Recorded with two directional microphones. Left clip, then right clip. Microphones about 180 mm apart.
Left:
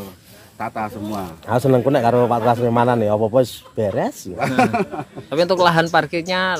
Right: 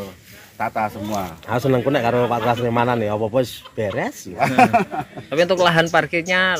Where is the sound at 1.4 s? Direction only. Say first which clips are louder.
Left 4 dB; 60° left (ahead or behind).